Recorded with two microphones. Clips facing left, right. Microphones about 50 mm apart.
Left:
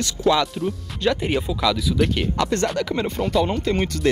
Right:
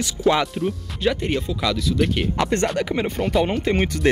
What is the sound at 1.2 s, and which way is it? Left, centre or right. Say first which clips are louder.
Speech: left 1 dB; centre.